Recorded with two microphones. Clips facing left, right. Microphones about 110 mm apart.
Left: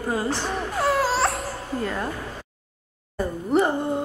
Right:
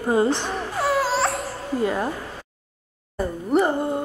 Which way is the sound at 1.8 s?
10° right (ahead or behind).